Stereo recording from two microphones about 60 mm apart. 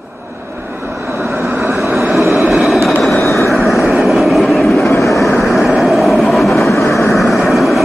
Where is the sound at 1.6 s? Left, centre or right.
Right.